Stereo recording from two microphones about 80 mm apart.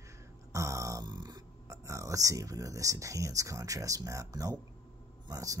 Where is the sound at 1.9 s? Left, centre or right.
Right.